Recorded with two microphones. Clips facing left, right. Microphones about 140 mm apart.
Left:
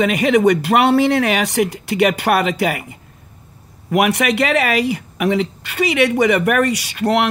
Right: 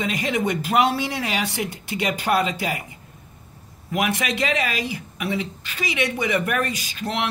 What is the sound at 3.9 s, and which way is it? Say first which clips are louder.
Speech: left 8 dB; 70° left (ahead or behind).